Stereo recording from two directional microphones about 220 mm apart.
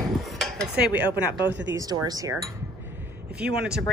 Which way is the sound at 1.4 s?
55° right (ahead or behind).